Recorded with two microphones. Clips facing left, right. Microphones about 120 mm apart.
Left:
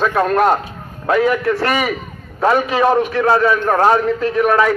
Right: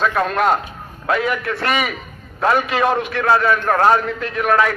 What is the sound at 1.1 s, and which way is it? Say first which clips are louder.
Speech: left 8 dB; 35° left (ahead or behind).